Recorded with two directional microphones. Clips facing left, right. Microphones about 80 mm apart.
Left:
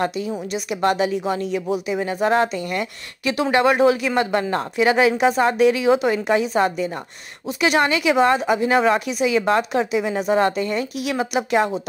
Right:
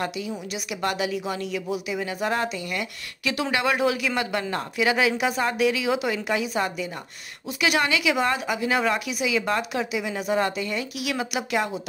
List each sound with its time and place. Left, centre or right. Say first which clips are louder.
0.0 s a woman's voice: left 6 dB; left